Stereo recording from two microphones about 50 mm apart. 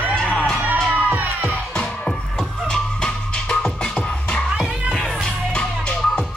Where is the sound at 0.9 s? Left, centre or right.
Right.